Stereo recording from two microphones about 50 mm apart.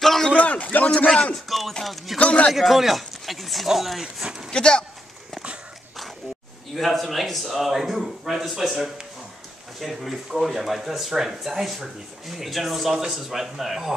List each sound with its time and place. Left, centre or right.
0.0 s a sound: centre
0.4 s a man's voice: left
0.9 s speech: centre
1.3 s a man's voice: centre
2.1 s speech: left
2.5 s a man's voice: centre
4.0 s speech: centre
4.5 s speech: centre
6.7 s a man's voice: centre